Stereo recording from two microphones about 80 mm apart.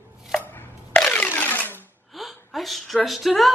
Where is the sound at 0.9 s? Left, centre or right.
Centre.